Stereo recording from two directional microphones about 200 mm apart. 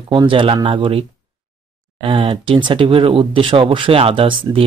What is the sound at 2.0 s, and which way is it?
Speech, 30° right (ahead or behind).